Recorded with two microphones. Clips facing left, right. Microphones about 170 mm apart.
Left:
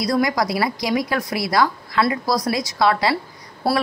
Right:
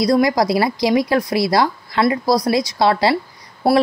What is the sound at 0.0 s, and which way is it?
A woman's voice, 25° right (ahead or behind).